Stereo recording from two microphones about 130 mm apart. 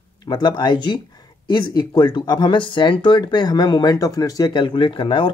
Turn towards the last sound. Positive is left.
turn(degrees=40)  # may be behind; listen again after turning